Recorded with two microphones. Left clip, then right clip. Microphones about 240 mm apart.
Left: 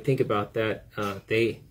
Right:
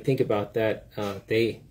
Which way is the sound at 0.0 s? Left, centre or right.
Centre.